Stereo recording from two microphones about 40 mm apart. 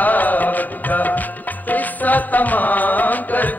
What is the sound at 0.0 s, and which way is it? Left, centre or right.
Music, left.